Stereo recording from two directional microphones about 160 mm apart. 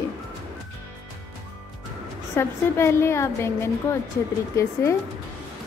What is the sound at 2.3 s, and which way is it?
A woman's voice, 15° left (ahead or behind).